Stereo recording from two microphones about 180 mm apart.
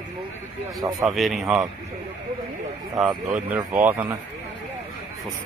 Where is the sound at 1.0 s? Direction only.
Centre (ahead or behind).